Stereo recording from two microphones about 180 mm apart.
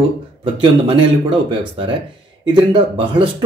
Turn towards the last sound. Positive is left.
turn(degrees=-30)  # may be behind; listen again after turning